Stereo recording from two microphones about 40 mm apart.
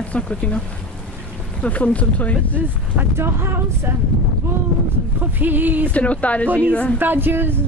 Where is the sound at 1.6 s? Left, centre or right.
Left.